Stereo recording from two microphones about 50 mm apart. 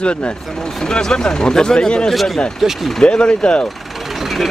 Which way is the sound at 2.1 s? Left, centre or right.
Centre.